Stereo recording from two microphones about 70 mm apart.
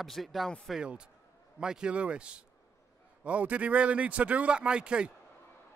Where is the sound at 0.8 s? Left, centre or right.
Centre.